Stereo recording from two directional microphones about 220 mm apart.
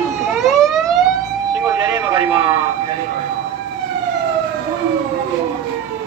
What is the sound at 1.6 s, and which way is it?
Vehicle, 20° right (ahead or behind).